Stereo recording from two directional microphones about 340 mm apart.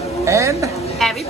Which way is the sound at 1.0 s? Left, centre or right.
Centre.